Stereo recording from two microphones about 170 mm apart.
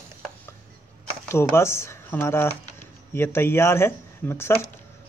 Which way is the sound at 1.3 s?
15° left (ahead or behind).